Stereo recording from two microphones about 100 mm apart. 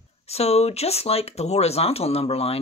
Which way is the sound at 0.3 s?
90° left.